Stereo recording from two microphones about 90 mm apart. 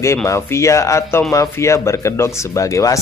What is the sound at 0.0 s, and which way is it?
Speech, 30° left (ahead or behind).